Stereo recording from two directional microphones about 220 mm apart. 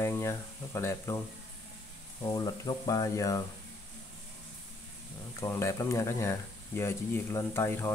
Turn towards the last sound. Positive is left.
turn(degrees=10)  # may be behind; listen again after turning